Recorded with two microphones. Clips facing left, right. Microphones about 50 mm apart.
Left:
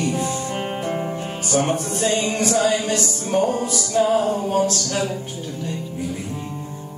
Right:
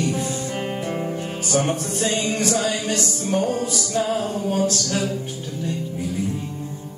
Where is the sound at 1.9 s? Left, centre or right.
Centre.